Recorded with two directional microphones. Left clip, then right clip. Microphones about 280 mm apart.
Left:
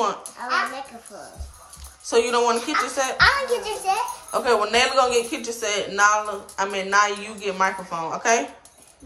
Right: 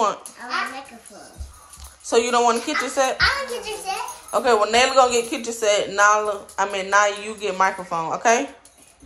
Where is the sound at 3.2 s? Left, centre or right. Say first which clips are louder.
Left 3 dB; left.